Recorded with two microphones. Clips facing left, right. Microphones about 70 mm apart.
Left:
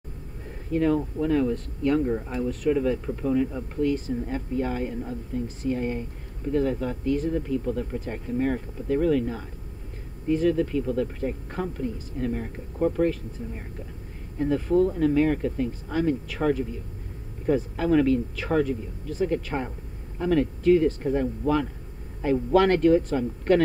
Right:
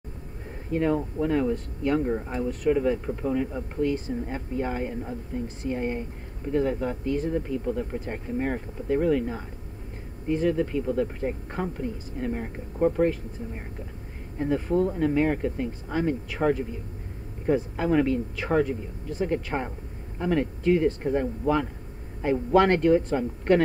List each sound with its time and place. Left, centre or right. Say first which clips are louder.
0.7 s speech: left 2 dB; right
3.8 s speech: left 1 dB; right
14.4 s speech: left 2 dB; right